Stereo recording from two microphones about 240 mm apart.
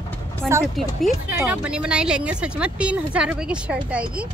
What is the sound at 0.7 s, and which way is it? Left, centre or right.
Speech, centre.